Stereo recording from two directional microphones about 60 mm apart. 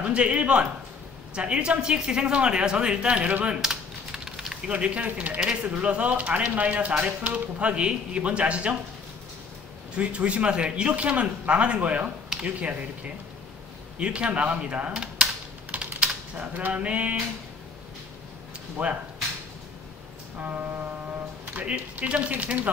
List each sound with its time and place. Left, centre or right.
0.0 s a woman's voice: right
3.4 s typing: centre
4.6 s speech: right
5.4 s a woman's voice: centre
5.7 s speech: right
9.9 s speech: centre
12.3 s a sound: centre
13.9 s speech: centre
15.7 s typing: right
18.8 s speech: right
20.3 s speech: right